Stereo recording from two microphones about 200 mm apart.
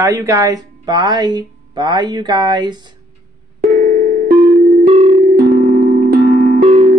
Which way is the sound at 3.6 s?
45° right (ahead or behind).